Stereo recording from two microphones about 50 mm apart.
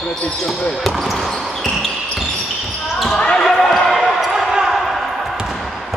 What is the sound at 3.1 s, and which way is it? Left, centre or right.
Basketball bounce, centre.